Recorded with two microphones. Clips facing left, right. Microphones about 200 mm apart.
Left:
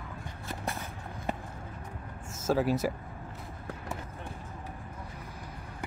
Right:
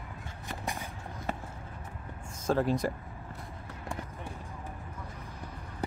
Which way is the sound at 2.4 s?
5° left (ahead or behind).